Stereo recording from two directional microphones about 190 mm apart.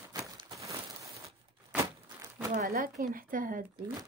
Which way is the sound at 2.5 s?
50° right (ahead or behind).